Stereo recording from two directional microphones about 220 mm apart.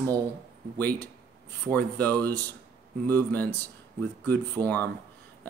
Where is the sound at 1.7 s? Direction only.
10° left (ahead or behind).